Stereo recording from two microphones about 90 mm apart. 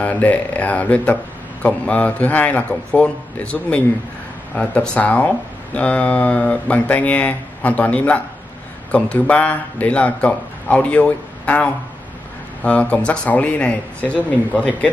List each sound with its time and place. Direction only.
0.0 s speech: 15° left (ahead or behind)